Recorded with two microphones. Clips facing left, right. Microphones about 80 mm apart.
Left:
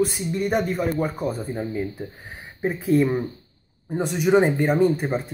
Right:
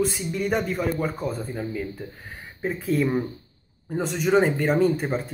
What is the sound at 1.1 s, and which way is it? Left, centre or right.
Speech, centre.